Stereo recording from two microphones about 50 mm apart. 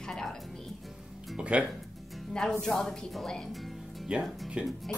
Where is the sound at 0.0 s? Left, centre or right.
Centre.